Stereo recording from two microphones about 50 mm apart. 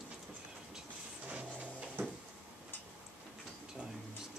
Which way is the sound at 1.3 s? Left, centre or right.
Right.